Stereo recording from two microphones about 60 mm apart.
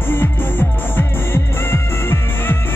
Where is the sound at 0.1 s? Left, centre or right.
Left.